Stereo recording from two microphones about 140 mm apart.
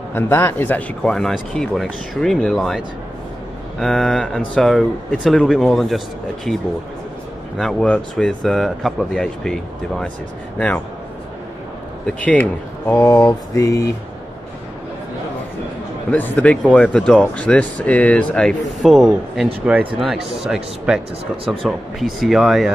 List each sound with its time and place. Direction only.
0.1 s speech: 15° left (ahead or behind)
3.8 s speech: 5° left (ahead or behind)
12.1 s speech: 10° left (ahead or behind)
12.9 s mantra: 20° left (ahead or behind)
16.1 s speech: 10° left (ahead or behind)